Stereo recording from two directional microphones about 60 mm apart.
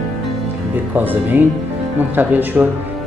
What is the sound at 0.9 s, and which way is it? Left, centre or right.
A man's voice, right.